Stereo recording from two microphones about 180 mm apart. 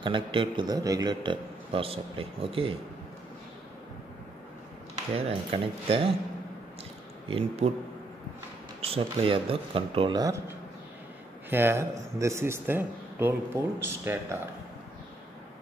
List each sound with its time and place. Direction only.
0.0 s a man's voice: 25° right (ahead or behind)
5.1 s speech: 35° right (ahead or behind)
7.2 s speech: 30° right (ahead or behind)
8.8 s a man's voice: 30° right (ahead or behind)
11.5 s a man's voice: 15° right (ahead or behind)